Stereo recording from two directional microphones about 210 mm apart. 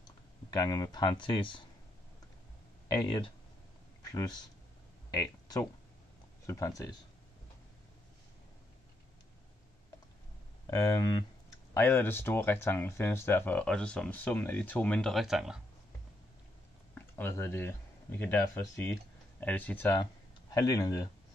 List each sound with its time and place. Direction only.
0.0 s speech: 15° left (ahead or behind)
2.9 s speech: 20° left (ahead or behind)
10.7 s speech: 15° left (ahead or behind); by 15.6 s centre (ahead or behind)
16.9 s speech: 10° left (ahead or behind)